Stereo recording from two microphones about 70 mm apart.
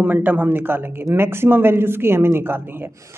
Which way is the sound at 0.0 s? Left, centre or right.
Right.